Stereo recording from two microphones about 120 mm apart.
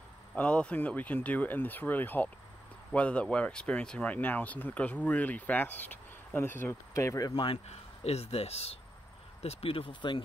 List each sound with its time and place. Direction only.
0.4 s speech: 10° left (ahead or behind); by 7.3 s 25° left (ahead or behind)
7.5 s speech: 60° left (ahead or behind)